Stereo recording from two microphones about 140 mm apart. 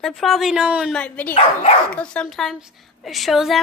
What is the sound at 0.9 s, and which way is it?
A woman's voice, 10° left (ahead or behind).